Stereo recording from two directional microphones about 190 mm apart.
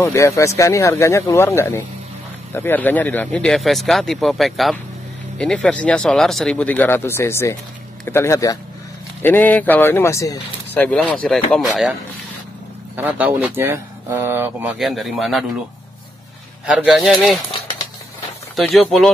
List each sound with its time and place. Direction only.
0.0 s speech: 15° left (ahead or behind); by 11.9 s centre (ahead or behind)
12.9 s speech: 10° right (ahead or behind)
16.6 s speech: 5° right (ahead or behind)
18.6 s speech: centre (ahead or behind)